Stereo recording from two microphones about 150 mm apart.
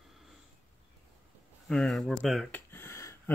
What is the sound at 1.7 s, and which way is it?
Speech, 5° left (ahead or behind).